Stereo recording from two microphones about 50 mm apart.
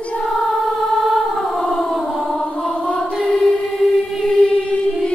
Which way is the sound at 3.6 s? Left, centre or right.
Centre.